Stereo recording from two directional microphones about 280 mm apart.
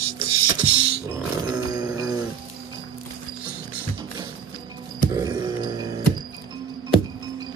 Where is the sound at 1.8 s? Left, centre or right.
Centre.